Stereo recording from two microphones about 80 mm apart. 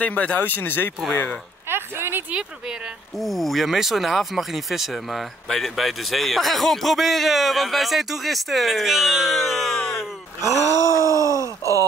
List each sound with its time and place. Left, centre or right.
0.0 s speech: centre
1.7 s a sound: right
3.2 s speech: centre
10.4 s groan: right